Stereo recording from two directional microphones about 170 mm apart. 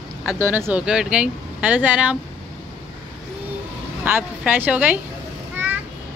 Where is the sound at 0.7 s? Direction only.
5° right (ahead or behind).